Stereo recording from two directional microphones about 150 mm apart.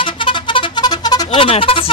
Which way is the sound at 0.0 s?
35° left (ahead or behind).